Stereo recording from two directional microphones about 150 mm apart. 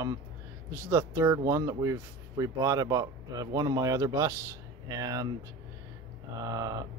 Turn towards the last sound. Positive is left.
turn(degrees=-25)  # may be behind; listen again after turning